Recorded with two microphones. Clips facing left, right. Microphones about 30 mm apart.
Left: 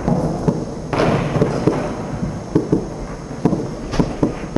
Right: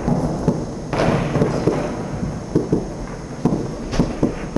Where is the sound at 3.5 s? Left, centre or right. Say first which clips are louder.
Left 1 dB; centre.